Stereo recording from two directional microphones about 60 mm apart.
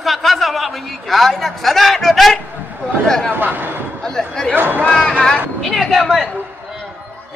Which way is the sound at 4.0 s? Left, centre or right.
Centre.